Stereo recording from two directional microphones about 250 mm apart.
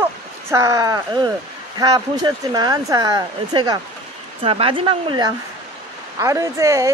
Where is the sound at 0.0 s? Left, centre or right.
Centre.